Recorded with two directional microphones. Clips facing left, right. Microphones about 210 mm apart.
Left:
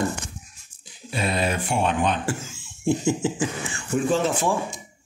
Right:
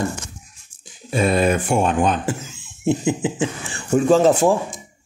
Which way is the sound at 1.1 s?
50° right (ahead or behind).